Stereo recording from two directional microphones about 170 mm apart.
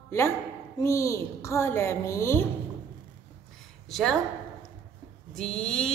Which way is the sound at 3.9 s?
Centre (ahead or behind).